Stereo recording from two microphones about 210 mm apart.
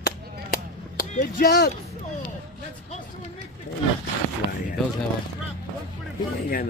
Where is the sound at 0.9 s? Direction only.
45° left (ahead or behind).